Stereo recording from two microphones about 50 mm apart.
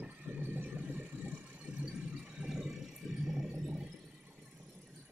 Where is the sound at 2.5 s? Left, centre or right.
Centre.